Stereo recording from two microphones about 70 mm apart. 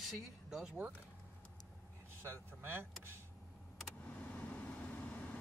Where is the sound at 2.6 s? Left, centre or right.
Right.